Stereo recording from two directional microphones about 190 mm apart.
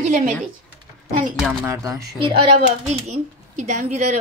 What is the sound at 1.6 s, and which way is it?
Speech, 15° right (ahead or behind).